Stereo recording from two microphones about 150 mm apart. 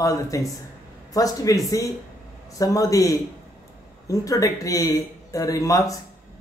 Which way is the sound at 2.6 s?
25° left (ahead or behind).